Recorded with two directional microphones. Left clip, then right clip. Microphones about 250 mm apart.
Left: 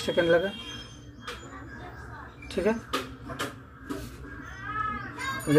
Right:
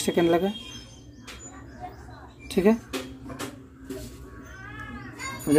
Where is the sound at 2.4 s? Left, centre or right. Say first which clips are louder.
Right 5 dB; right.